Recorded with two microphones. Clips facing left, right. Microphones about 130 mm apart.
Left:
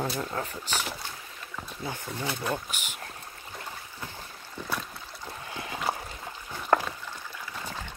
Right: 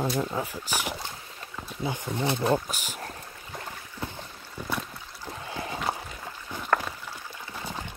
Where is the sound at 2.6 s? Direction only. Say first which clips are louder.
Right 3 dB; 35° right (ahead or behind).